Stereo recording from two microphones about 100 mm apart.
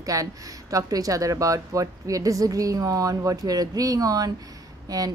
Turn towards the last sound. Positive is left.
turn(degrees=-35)  # may be behind; listen again after turning